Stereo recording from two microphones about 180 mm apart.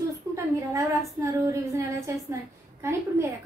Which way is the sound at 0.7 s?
15° right (ahead or behind).